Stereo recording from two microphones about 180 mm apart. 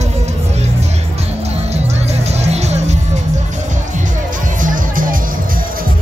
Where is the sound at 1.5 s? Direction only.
35° right (ahead or behind).